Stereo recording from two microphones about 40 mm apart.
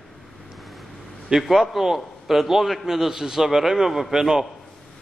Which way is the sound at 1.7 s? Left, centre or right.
Centre.